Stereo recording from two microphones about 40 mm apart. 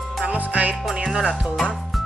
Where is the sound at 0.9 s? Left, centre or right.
Centre.